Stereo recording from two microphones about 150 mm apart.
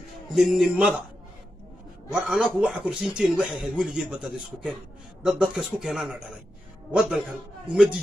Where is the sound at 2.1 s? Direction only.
5° right (ahead or behind).